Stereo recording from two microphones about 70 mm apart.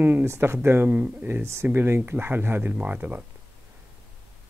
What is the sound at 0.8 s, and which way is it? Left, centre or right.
Speech, centre.